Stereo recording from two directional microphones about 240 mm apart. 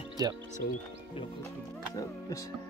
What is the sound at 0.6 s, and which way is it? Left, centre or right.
Speech, left.